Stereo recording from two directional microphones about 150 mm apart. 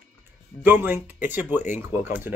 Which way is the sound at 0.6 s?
10° right (ahead or behind).